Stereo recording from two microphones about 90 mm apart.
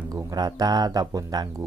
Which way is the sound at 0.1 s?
45° right (ahead or behind).